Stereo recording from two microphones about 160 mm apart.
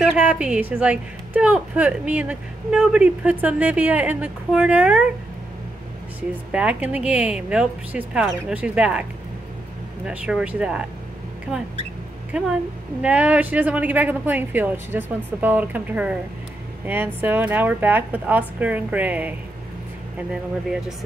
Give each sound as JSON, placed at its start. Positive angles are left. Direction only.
{"t": 0.2, "sound": "a woman's voice", "side_deg": -10}
{"t": 6.5, "sound": "a woman's voice", "side_deg": -10}
{"t": 10.0, "sound": "speech", "side_deg": -5}
{"t": 12.3, "sound": "a woman's voice", "side_deg": -5}